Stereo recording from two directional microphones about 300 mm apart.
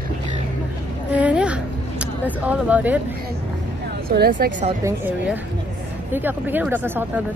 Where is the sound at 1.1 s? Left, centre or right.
Centre.